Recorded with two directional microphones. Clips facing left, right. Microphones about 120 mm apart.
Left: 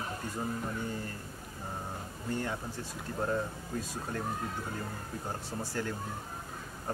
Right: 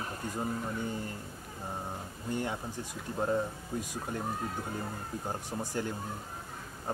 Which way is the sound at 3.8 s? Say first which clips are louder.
Even; 20° right (ahead or behind).